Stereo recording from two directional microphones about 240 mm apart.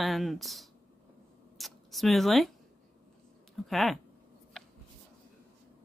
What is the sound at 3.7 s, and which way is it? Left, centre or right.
Speech, centre.